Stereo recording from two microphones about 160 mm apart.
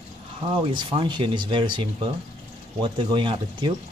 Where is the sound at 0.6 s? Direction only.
35° right (ahead or behind).